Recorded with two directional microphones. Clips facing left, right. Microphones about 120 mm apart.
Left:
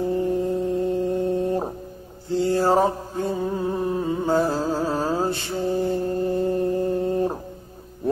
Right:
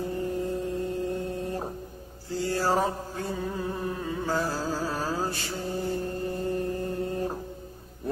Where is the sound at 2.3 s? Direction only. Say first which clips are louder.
Left 7 dB; 25° left (ahead or behind).